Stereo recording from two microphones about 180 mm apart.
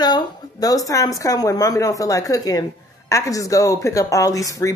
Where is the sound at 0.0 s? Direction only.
20° left (ahead or behind).